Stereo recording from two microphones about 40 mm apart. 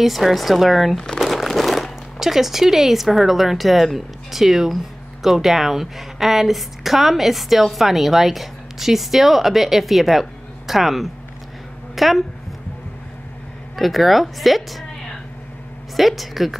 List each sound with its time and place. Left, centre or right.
0.0 s a woman's voice: centre
0.9 s speech: centre
1.2 s a woman's voice: centre
13.7 s a woman's voice: centre
16.0 s a woman's voice: centre